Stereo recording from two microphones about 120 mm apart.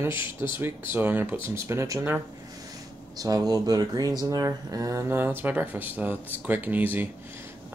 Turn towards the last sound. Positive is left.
turn(degrees=-15)  # may be behind; listen again after turning